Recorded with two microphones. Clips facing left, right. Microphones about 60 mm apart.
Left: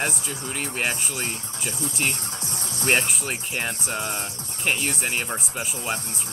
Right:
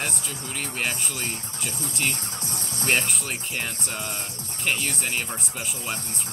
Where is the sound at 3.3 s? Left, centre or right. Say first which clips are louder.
Left 3 dB; centre.